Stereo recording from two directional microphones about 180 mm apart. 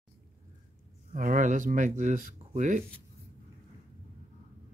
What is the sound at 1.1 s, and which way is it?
Speech, 45° right (ahead or behind).